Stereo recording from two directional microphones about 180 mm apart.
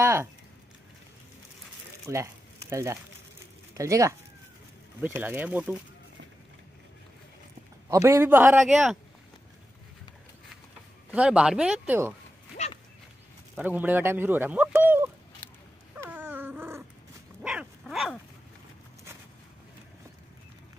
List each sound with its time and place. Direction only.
0.0 s speech: 15° right (ahead or behind)
2.0 s a sound: 15° right (ahead or behind)
3.7 s speech: 15° right (ahead or behind)
7.9 s speech: 15° right (ahead or behind)
8.5 s speech: centre (ahead or behind)
11.1 s speech: 5° right (ahead or behind)
13.6 s speech: 10° right (ahead or behind)
16.0 s dog: 10° right (ahead or behind)